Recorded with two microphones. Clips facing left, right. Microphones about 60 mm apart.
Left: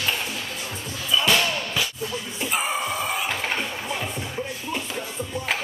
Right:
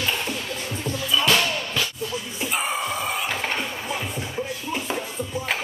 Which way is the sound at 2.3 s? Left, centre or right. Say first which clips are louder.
Left 1 dB; centre.